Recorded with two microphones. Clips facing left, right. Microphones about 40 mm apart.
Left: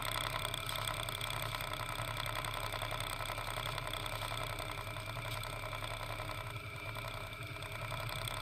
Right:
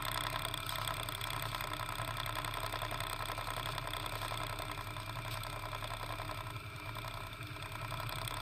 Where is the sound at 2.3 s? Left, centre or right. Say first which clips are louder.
Even; right.